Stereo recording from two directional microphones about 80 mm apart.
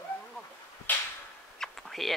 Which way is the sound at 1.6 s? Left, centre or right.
Centre.